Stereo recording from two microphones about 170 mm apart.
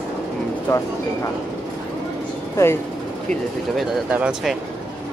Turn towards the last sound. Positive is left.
turn(degrees=-5)  # may be behind; listen again after turning